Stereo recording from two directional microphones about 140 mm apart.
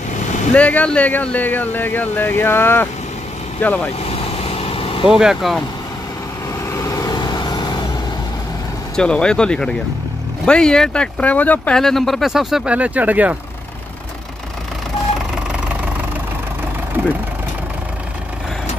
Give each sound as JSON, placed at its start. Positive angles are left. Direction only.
{"t": 0.5, "sound": "speech", "side_deg": 10}
{"t": 4.0, "sound": "vehicle", "side_deg": 45}
{"t": 5.0, "sound": "speech", "side_deg": -5}
{"t": 6.7, "sound": "vehicle", "side_deg": 25}
{"t": 8.9, "sound": "speech", "side_deg": 5}